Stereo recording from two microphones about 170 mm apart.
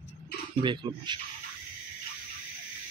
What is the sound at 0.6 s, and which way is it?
Speech, 25° right (ahead or behind).